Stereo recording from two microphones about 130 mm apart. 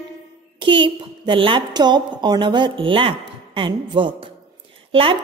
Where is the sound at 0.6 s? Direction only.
40° right (ahead or behind).